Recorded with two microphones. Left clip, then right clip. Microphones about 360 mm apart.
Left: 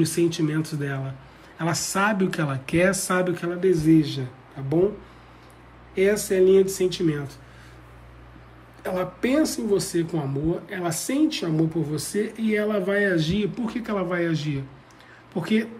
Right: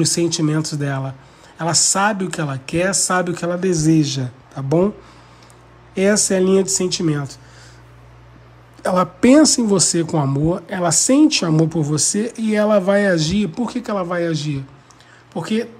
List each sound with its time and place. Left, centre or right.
0.0 s speech: centre
5.9 s speech: centre
8.8 s speech: centre